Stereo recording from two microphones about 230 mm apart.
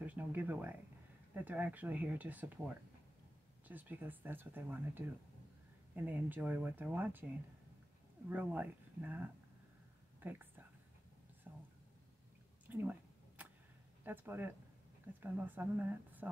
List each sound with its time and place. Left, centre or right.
0.0 s speech: centre
3.6 s speech: centre
8.3 s speech: centre
11.5 s whispering: centre
12.6 s a sound: centre
14.0 s speech: centre